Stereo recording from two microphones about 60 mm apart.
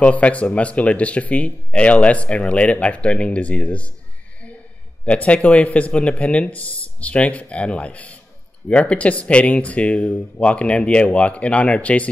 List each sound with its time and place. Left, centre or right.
0.0 s speech: left
5.0 s speech: left